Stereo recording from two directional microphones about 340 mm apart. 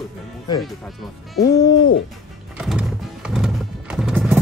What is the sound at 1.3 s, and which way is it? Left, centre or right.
Bird, left.